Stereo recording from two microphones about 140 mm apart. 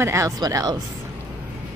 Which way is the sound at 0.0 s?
20° right (ahead or behind).